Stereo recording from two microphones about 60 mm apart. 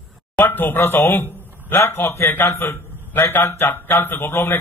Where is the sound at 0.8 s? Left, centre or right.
Left.